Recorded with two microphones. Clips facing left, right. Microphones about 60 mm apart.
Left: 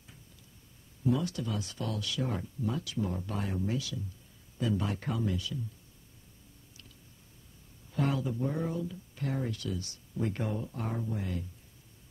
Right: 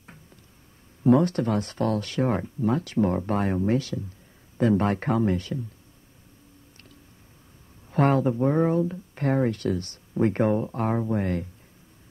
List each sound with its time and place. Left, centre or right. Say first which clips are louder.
1.0 s speech: right 11 dB; right
7.9 s speech: right 10 dB; right